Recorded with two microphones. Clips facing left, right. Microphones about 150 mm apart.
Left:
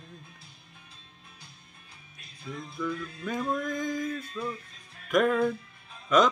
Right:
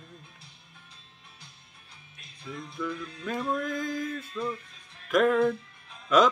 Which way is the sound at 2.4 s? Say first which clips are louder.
Left 1 dB; 5° left (ahead or behind).